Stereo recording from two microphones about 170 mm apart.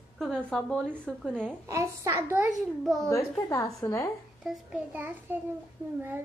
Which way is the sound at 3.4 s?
20° left (ahead or behind).